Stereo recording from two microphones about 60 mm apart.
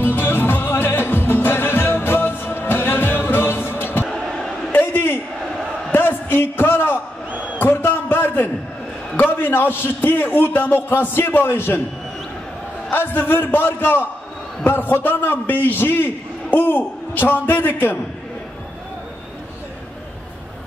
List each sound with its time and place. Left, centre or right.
0.0 s music: left
4.7 s a sound: left
9.2 s a man's voice: left
12.9 s a man's voice: left